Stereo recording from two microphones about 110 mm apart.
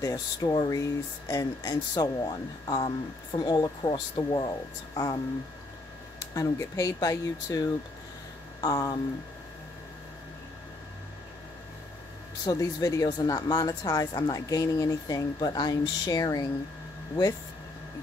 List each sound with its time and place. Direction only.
0.0 s speech: 35° left (ahead or behind)
6.1 s speech: 30° left (ahead or behind)
12.4 s speech: 35° left (ahead or behind)